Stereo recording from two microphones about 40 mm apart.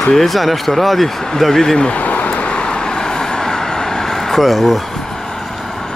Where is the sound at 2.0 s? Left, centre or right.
Left.